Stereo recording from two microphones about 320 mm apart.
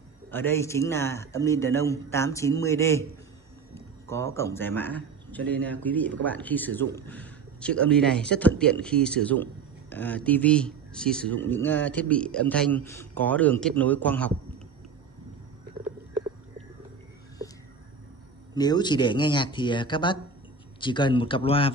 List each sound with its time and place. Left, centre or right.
0.3 s a man's voice: centre
18.5 s a man's voice: centre